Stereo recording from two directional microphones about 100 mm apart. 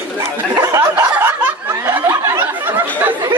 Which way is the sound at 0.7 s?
20° right (ahead or behind).